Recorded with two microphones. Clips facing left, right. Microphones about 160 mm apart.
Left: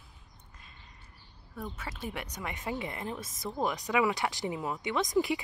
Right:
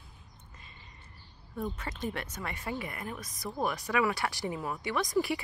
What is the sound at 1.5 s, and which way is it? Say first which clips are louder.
Speech: right 4 dB; 5° left (ahead or behind).